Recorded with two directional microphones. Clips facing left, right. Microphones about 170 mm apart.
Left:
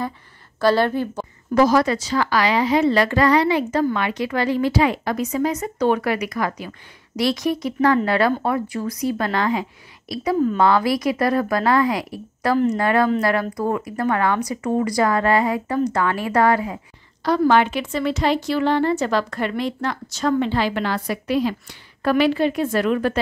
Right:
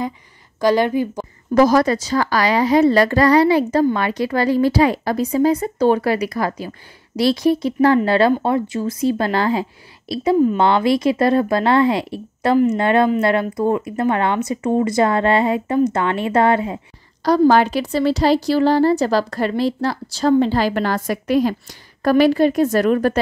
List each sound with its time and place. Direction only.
0.6 s speech: 15° right (ahead or behind)
1.5 s speech: 40° right (ahead or behind); by 16.8 s 25° right (ahead or behind)
17.2 s speech: 40° right (ahead or behind)